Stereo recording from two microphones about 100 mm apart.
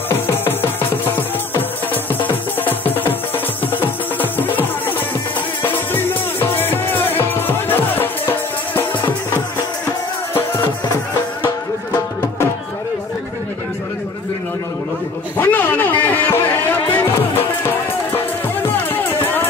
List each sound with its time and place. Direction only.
0.3 s music: 20° left (ahead or behind)
2.2 s music: 20° left (ahead or behind)
15.3 s music: 20° left (ahead or behind)
18.9 s music: 20° left (ahead or behind)